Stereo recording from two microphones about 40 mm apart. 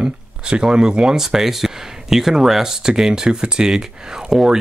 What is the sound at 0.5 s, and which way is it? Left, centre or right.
Speech, right.